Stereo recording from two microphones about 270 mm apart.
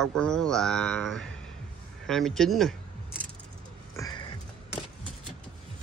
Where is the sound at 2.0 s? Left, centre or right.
Centre.